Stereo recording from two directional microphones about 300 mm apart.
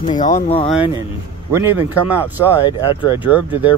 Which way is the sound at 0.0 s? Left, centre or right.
Left.